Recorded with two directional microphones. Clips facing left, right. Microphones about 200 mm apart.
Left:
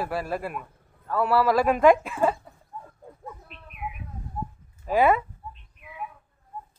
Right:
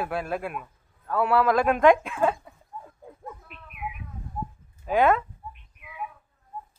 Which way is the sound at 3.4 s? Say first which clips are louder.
Even; 35° left (ahead or behind).